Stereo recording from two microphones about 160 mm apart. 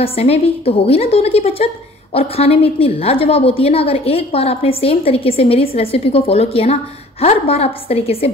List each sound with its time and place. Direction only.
0.0 s a woman's voice: 40° left (ahead or behind)